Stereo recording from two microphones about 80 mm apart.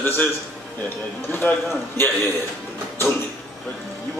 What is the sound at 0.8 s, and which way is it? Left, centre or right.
A man's voice, left.